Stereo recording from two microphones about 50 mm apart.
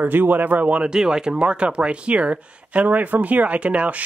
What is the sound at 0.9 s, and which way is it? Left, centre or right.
Speech, centre.